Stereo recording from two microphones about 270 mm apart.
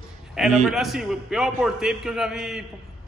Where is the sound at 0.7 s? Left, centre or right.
Centre.